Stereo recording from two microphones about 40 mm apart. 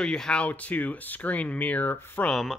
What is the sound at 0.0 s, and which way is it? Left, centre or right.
Speech, centre.